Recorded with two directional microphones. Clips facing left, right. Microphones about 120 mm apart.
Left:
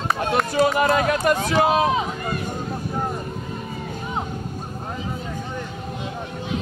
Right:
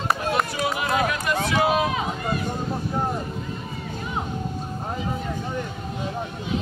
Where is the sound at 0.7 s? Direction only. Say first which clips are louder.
Left 5 dB; 45° left (ahead or behind).